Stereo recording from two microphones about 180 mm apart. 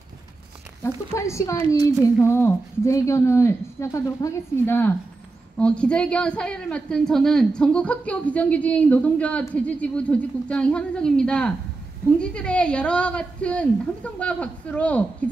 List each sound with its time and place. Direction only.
0.8 s a woman's voice: 15° left (ahead or behind)